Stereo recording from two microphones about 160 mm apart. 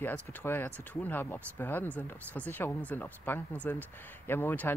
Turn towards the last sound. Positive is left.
turn(degrees=10)  # may be behind; listen again after turning